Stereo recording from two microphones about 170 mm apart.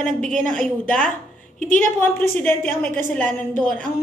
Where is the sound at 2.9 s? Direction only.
50° right (ahead or behind).